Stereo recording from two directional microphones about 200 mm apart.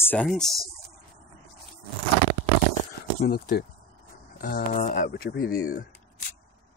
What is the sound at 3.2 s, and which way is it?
Speech, 50° left (ahead or behind).